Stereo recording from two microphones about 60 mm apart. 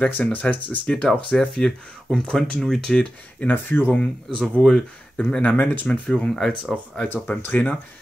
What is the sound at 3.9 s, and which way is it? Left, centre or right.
Speech, centre.